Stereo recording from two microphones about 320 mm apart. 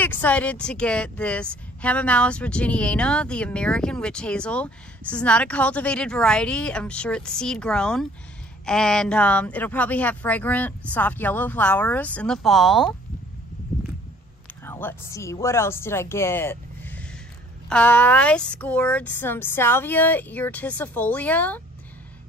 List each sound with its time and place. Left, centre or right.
0.0 s a woman's voice: centre
14.6 s a woman's voice: centre